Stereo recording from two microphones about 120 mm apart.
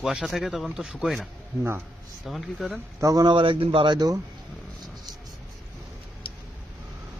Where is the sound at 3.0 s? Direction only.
30° right (ahead or behind).